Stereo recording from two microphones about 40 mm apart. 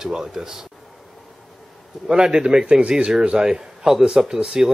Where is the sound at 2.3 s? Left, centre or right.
Right.